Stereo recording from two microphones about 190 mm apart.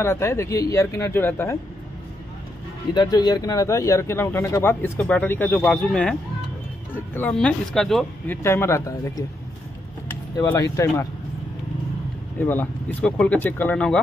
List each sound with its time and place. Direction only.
0.0 s speech: 15° left (ahead or behind)
2.9 s speech: 20° left (ahead or behind); by 6.1 s 5° left (ahead or behind)
7.2 s speech: 5° left (ahead or behind)
8.4 s speech: 15° left (ahead or behind)
10.3 s speech: 15° left (ahead or behind)
12.4 s speech: 10° left (ahead or behind)